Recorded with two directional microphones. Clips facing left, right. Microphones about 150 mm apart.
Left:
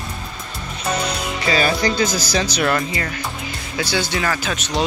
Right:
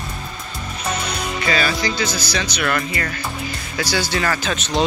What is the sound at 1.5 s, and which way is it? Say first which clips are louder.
Speech: left 3 dB; 40° left (ahead or behind).